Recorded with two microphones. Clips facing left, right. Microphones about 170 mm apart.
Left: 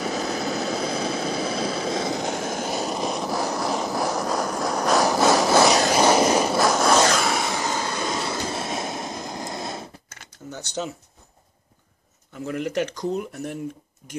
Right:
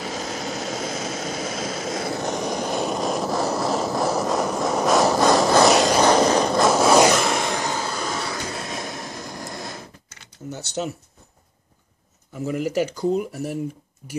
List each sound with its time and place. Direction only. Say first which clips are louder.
0.0 s engine: left 3 dB; 40° left (ahead or behind); by 6.7 s 5° left (ahead or behind)
6.7 s vehicle: right 6 dB; 5° right (ahead or behind)
7.7 s vehicle: even; 20° left (ahead or behind)
10.0 s a sound: left 3 dB; 50° left (ahead or behind)
10.5 s speech: right 2 dB; 5° right (ahead or behind)
12.4 s speech: right 2 dB; 10° right (ahead or behind)